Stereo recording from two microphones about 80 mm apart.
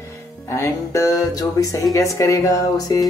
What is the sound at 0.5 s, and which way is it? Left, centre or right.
Speech, left.